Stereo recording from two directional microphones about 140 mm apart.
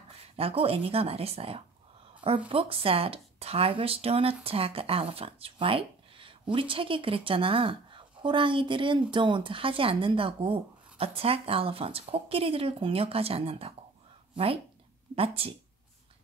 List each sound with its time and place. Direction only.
0.2 s speech: 45° right (ahead or behind)